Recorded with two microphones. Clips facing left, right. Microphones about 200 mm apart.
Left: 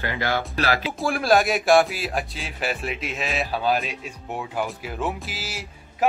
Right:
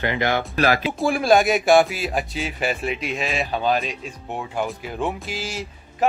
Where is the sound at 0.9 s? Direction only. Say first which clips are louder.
Right 1 dB; centre (ahead or behind).